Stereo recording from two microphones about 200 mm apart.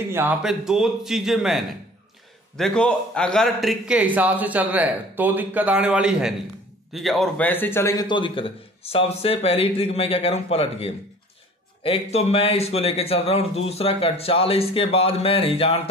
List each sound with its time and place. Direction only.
0.1 s a man's voice: 5° right (ahead or behind); by 15.8 s 30° left (ahead or behind)